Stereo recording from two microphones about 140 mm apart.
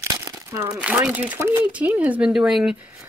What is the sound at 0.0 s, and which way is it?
Crumpling, 20° right (ahead or behind).